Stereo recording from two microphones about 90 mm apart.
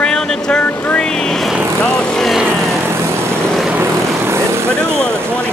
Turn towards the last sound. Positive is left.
turn(degrees=-30)  # may be behind; listen again after turning